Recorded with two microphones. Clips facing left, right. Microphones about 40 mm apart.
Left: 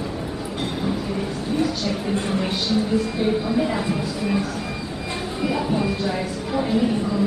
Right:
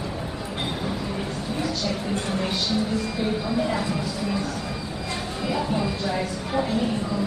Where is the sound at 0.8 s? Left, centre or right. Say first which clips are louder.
Left 4 dB; centre.